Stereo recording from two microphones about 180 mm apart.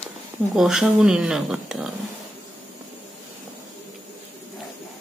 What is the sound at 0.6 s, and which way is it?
Speech, centre (ahead or behind).